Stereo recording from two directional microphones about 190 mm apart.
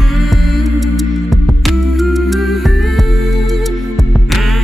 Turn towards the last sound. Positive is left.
turn(degrees=0)  # may be behind; listen again after turning